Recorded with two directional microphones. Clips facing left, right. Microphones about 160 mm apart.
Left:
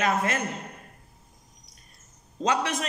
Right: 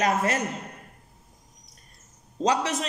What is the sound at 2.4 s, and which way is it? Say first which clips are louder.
Speech: right 2 dB; 35° right (ahead or behind).